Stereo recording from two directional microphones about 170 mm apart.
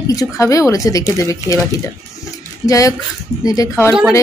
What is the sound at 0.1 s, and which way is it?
Speech, 20° left (ahead or behind).